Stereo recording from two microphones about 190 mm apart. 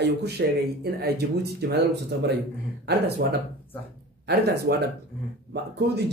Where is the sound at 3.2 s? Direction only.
60° right (ahead or behind).